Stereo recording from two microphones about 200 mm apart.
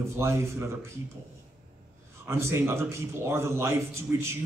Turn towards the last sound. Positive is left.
turn(degrees=-10)  # may be behind; listen again after turning